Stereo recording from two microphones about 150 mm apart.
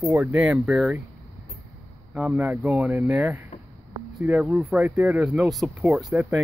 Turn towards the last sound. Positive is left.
turn(degrees=-5)  # may be behind; listen again after turning